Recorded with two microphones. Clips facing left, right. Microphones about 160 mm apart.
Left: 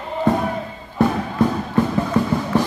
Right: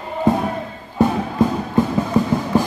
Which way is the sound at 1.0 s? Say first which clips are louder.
Right 1 dB; 15° right (ahead or behind).